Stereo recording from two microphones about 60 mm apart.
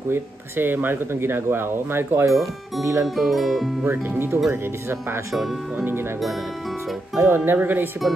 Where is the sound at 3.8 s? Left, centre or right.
Right.